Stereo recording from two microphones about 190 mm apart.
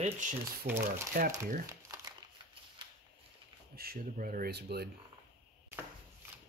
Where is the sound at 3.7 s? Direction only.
50° right (ahead or behind).